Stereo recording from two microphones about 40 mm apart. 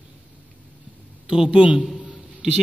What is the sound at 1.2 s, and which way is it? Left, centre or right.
Speech, centre.